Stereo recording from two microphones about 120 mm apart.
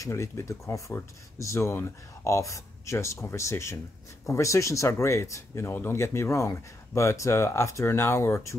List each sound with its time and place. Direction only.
0.0 s speech: 25° left (ahead or behind)